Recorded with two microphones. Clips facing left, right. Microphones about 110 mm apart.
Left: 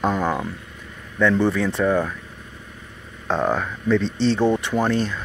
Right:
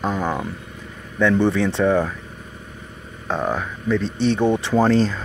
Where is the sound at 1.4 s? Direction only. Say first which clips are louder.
Right 2 dB; 25° right (ahead or behind).